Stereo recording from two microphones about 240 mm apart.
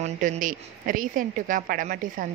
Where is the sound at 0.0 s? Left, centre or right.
Right.